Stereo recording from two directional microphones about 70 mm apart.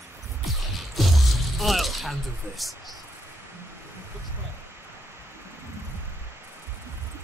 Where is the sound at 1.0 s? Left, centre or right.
Centre.